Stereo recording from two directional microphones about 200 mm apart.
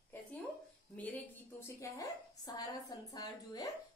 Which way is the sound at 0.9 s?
10° left (ahead or behind).